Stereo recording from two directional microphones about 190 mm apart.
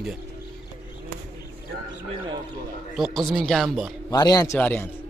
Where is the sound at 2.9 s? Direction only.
Centre (ahead or behind).